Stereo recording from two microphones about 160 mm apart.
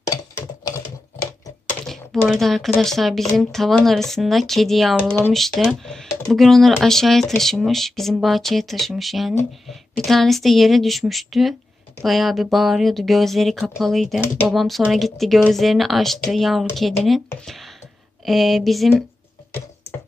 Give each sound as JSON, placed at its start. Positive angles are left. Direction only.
{"t": 1.7, "sound": "speech", "side_deg": 0}
{"t": 18.2, "sound": "speech", "side_deg": 0}